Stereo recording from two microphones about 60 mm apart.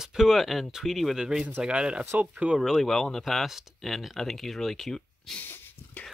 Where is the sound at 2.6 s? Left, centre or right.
Centre.